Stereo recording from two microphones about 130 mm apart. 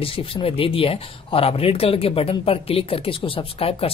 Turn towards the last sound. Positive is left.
turn(degrees=45)  # may be behind; listen again after turning